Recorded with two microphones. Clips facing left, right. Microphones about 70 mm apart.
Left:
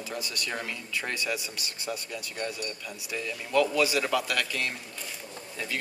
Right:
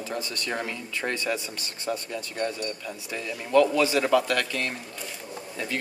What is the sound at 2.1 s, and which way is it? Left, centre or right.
Speech, right.